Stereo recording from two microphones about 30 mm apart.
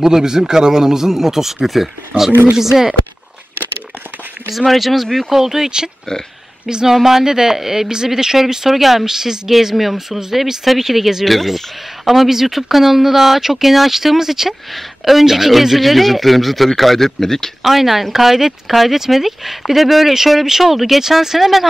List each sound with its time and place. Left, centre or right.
0.0 s speech: right
2.5 s speech: centre
4.6 s a man's voice: centre
5.3 s a woman's voice: centre
6.9 s speech: centre
8.6 s speech: centre
11.2 s a man's voice: centre
17.6 s speech: centre
21.4 s a man's voice: centre